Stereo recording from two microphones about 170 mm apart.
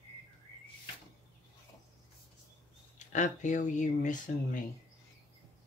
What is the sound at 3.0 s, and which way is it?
Speech, 45° left (ahead or behind).